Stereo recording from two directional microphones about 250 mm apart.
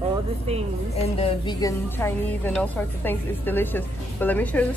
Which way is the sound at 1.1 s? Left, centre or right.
Left.